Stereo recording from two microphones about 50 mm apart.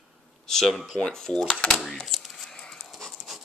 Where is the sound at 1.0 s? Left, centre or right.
Centre.